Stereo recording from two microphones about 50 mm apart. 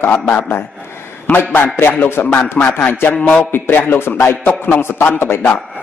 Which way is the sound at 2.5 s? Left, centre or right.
Left.